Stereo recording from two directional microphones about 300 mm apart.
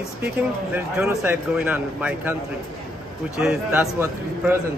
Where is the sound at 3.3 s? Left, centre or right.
Centre.